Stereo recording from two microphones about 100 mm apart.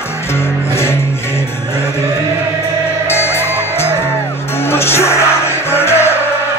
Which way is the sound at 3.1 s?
25° left (ahead or behind).